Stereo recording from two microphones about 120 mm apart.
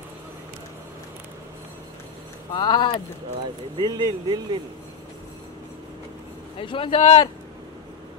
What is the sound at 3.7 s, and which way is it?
Speech, 40° right (ahead or behind).